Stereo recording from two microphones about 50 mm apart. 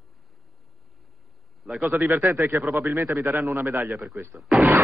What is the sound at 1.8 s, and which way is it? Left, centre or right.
A man's voice, right.